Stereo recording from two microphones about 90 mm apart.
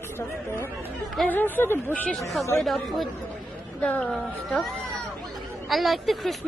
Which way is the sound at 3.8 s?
15° left (ahead or behind).